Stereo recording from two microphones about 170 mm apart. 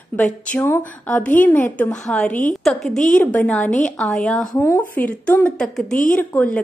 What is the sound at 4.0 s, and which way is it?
Speech, 5° left (ahead or behind).